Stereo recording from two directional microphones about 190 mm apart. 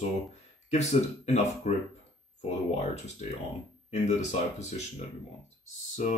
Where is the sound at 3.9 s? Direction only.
35° left (ahead or behind).